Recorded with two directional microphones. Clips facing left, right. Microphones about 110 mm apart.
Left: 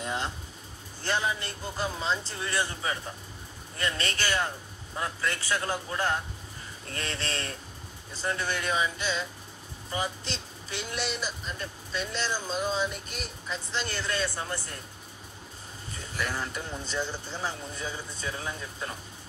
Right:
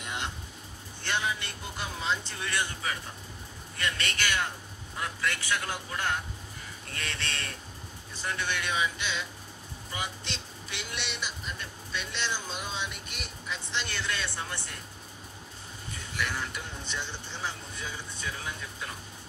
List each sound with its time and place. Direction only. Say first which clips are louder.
0.0 s a sound: left 4 dB; 35° left (ahead or behind)
1.0 s speech: left 2 dB; 35° left (ahead or behind)
16.2 s speech: left 1 dB; 35° left (ahead or behind)